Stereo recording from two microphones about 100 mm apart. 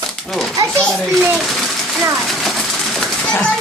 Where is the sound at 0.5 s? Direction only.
30° right (ahead or behind).